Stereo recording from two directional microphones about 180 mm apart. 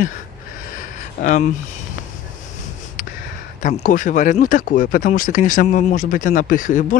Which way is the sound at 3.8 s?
45° left (ahead or behind).